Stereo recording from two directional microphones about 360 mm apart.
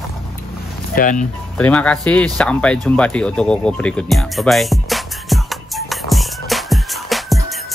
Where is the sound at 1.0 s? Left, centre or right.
Left.